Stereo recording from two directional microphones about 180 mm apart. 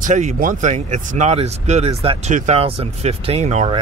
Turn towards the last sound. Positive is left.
turn(degrees=-40)  # may be behind; listen again after turning